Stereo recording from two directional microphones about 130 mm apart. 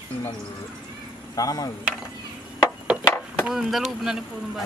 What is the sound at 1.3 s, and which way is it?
Speech, 30° left (ahead or behind).